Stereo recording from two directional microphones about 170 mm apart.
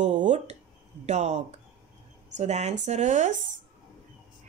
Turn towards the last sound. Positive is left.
turn(degrees=-45)  # may be behind; listen again after turning